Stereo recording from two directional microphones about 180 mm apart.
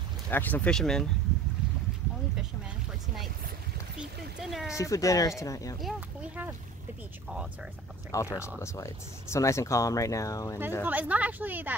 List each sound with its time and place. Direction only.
0.3 s speech: 10° left (ahead or behind)
4.4 s speech: centre (ahead or behind)
4.7 s speech: 15° left (ahead or behind)
5.8 s a woman's voice: 5° right (ahead or behind)
8.1 s speech: 15° left (ahead or behind)
10.8 s a woman's voice: 10° right (ahead or behind)